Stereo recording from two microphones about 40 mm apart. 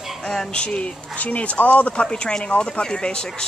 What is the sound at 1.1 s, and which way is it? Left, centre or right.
Speech, left.